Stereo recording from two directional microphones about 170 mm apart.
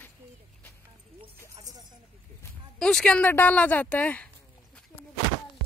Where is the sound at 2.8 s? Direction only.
5° left (ahead or behind).